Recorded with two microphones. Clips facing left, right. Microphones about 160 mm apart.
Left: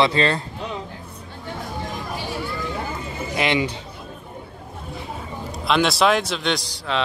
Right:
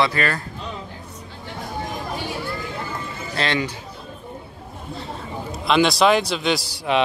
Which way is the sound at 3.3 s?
15° left (ahead or behind).